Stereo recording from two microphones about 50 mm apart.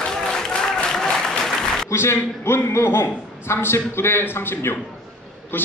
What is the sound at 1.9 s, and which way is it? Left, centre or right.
A man's voice, left.